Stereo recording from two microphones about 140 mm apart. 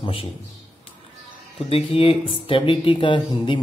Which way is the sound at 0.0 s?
40° left (ahead or behind).